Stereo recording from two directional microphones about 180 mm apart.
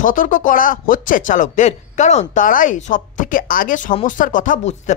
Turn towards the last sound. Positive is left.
turn(degrees=40)  # may be behind; listen again after turning